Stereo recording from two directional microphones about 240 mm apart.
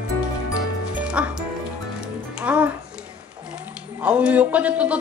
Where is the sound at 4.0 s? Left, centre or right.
Centre.